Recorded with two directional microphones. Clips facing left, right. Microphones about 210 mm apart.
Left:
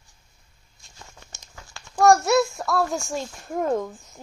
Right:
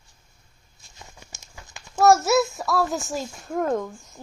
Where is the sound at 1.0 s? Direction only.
10° right (ahead or behind).